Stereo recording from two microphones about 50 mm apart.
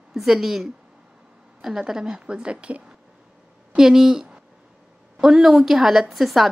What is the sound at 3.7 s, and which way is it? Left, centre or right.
A woman's voice, centre.